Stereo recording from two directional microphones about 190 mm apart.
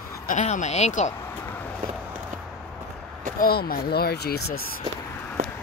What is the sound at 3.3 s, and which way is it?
Speech, 50° left (ahead or behind).